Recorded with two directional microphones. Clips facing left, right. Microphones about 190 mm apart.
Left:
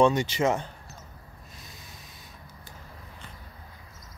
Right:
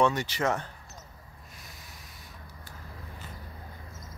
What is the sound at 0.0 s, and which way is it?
Speech, 15° left (ahead or behind).